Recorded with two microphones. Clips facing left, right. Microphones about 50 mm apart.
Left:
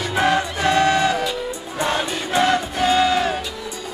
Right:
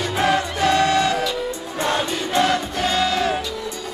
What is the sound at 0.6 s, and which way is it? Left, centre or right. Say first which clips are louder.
Music: left 1 dB; left.